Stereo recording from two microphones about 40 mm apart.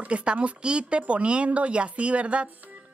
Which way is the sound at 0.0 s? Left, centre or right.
Right.